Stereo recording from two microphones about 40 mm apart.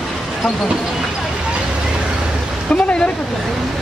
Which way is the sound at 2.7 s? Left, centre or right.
Left.